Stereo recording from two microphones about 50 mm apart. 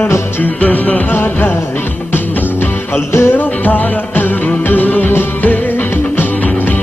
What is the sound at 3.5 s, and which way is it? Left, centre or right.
Music, left.